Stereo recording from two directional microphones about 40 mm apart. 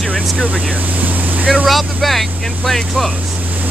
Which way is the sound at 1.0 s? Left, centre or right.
Right.